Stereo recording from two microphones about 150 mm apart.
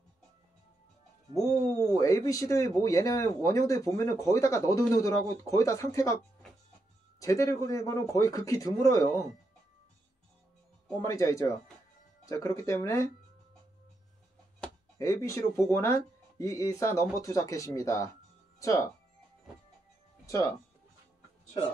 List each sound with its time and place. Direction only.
2.0 s speech: 20° left (ahead or behind)
7.2 s speech: 20° left (ahead or behind)
11.0 s speech: 20° left (ahead or behind)
15.0 s speech: 20° left (ahead or behind)
20.2 s speech: 20° left (ahead or behind)